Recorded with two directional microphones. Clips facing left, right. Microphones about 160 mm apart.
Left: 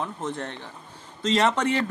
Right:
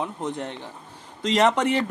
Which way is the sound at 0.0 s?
15° right (ahead or behind).